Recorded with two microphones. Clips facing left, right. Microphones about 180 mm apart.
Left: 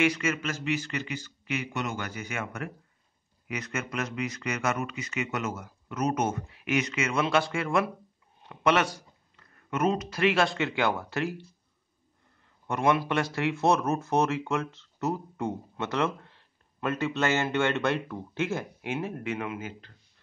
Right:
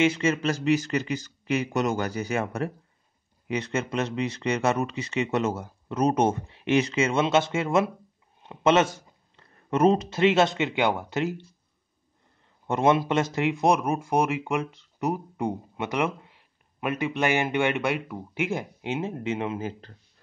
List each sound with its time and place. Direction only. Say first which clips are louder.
0.0 s speech: right 4 dB; 25° right (ahead or behind)
12.6 s speech: right 4 dB; 25° right (ahead or behind)